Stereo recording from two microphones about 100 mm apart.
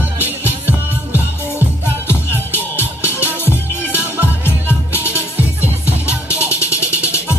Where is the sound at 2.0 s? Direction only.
25° left (ahead or behind).